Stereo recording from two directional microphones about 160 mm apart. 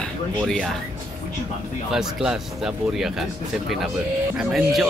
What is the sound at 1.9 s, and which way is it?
Speech, 5° right (ahead or behind).